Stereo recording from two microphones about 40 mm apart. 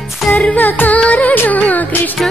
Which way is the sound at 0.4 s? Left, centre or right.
Left.